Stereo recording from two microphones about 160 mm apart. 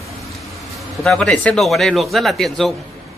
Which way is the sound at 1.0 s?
5° left (ahead or behind).